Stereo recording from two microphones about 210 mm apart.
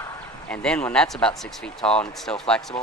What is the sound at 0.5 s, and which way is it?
Speech, 5° left (ahead or behind).